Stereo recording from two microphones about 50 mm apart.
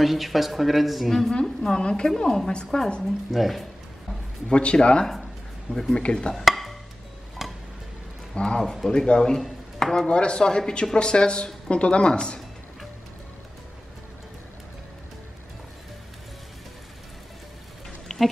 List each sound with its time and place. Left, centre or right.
0.0 s a woman's voice: centre
1.8 s a woman's voice: centre
3.3 s speech: centre
4.5 s a woman's voice: left
6.3 s music: centre
8.4 s a woman's voice: centre
9.4 s a sound: centre
10.0 s speech: centre
18.0 s a sound: centre